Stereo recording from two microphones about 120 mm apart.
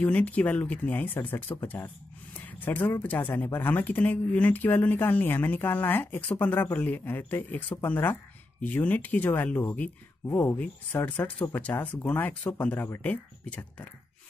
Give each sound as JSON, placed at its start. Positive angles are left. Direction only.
{"t": 0.0, "sound": "speech", "side_deg": 10}